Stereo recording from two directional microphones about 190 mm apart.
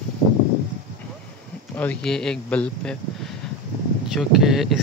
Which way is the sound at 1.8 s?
5° left (ahead or behind).